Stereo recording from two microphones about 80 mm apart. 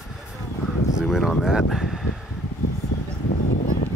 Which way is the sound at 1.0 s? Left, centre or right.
Centre.